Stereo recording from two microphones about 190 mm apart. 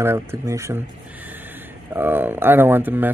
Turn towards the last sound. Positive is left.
turn(degrees=-10)  # may be behind; listen again after turning